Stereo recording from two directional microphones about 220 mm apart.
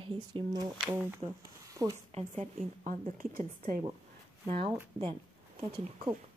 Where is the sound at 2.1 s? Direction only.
30° right (ahead or behind).